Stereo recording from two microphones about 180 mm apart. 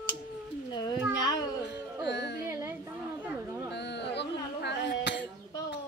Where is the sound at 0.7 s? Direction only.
20° left (ahead or behind).